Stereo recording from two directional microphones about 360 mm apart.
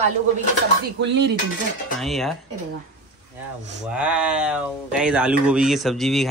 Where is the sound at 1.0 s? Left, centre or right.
Right.